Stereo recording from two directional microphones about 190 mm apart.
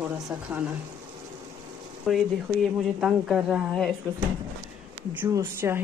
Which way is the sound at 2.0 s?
Centre (ahead or behind).